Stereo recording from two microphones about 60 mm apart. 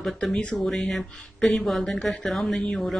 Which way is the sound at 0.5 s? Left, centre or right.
Centre.